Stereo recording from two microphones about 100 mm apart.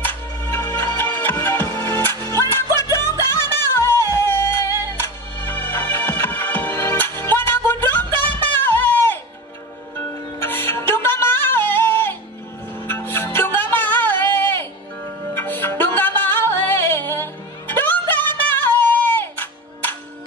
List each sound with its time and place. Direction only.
0.0 s music: 20° left (ahead or behind)
10.4 s music: 20° left (ahead or behind)